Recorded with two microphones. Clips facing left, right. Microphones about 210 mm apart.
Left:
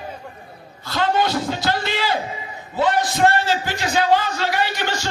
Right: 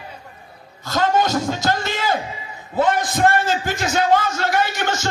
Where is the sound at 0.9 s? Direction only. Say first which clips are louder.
Right 1 dB; 45° right (ahead or behind).